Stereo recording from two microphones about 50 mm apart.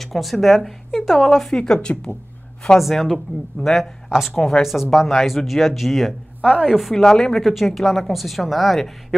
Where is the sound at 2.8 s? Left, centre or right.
Centre.